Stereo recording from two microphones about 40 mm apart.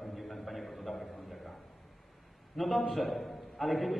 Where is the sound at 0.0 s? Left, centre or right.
Centre.